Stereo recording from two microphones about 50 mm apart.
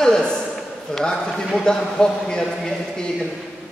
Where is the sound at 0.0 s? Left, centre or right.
Centre.